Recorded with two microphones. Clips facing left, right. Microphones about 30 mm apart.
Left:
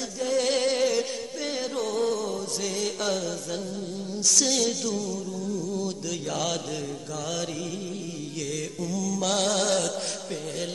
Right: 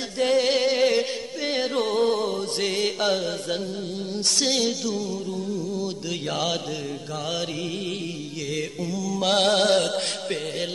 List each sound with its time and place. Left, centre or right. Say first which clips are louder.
0.4 s music: even; right
0.8 s music: right 4 dB; right
4.2 s music: even; right
4.5 s music: right 2 dB; right
6.3 s music: right 3 dB; right
8.5 s mantra: right 4 dB; right